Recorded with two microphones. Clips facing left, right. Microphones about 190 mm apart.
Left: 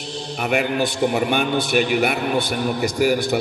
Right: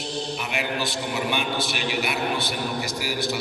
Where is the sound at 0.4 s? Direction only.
55° left (ahead or behind).